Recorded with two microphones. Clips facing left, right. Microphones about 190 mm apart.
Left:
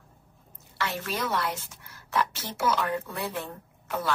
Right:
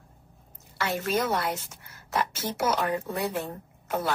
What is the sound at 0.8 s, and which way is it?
A woman's voice, 45° right (ahead or behind).